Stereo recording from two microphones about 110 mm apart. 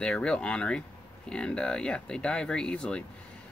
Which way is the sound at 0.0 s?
5° left (ahead or behind).